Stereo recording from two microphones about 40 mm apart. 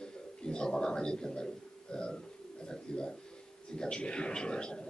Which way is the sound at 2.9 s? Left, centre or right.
Centre.